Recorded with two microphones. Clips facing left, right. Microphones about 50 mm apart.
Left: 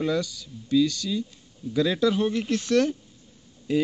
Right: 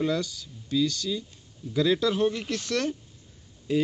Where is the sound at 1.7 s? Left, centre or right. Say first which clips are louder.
Left 1 dB; left.